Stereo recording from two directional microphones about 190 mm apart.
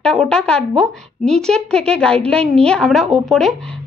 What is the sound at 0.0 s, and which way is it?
A woman's voice, 5° left (ahead or behind).